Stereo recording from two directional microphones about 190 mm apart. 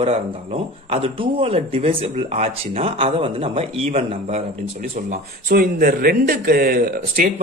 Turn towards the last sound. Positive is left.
turn(degrees=-50)  # may be behind; listen again after turning